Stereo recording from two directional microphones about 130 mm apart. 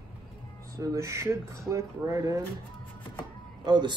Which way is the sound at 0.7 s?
25° right (ahead or behind).